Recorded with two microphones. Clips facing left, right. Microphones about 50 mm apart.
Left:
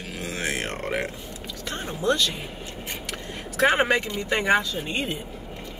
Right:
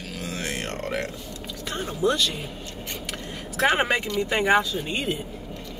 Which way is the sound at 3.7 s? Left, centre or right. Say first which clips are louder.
Left 1 dB; centre.